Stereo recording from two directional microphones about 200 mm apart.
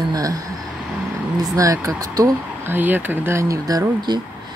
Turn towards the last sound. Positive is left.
turn(degrees=-15)  # may be behind; listen again after turning